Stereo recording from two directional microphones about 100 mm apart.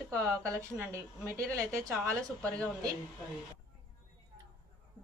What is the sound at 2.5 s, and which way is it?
Speech, 10° left (ahead or behind).